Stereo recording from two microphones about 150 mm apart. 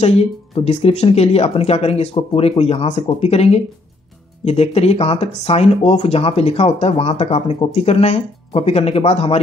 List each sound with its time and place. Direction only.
0.0 s speech: 45° left (ahead or behind)